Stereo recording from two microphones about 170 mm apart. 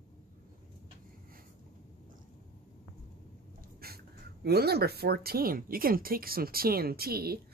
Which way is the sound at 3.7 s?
65° right (ahead or behind).